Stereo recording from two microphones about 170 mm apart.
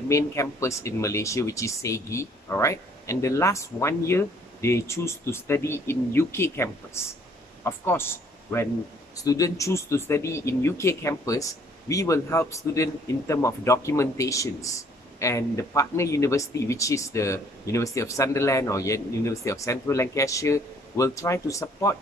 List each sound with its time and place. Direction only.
0.1 s speech: 15° left (ahead or behind)